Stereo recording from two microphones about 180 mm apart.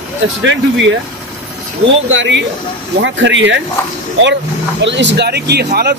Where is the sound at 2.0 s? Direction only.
90° right.